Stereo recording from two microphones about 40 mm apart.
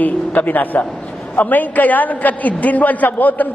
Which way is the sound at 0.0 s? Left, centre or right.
Left.